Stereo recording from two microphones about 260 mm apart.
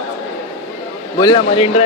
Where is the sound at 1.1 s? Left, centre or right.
Centre.